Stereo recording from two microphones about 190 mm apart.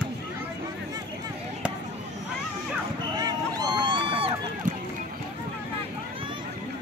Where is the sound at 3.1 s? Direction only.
20° right (ahead or behind).